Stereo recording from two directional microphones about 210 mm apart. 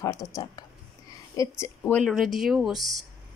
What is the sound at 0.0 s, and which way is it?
Speech, 15° left (ahead or behind).